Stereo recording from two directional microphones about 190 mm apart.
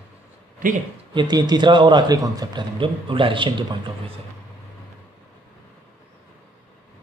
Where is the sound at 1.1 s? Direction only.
25° right (ahead or behind).